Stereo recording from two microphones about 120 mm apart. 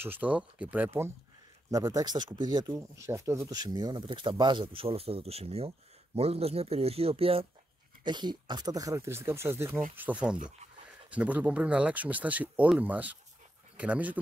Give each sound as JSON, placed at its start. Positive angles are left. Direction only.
{"t": 0.0, "sound": "speech", "side_deg": -15}
{"t": 1.7, "sound": "speech", "side_deg": -30}
{"t": 3.1, "sound": "speech", "side_deg": -20}
{"t": 8.0, "sound": "speech", "side_deg": -40}